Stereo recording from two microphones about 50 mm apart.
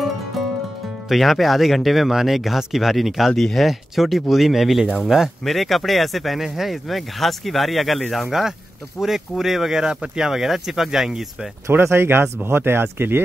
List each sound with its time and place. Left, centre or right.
1.0 s speech: centre
8.3 s speech: centre
11.8 s speech: right